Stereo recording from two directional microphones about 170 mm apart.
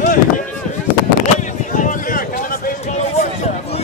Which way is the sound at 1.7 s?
50° left (ahead or behind).